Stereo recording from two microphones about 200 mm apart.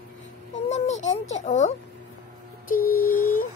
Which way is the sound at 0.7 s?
35° left (ahead or behind).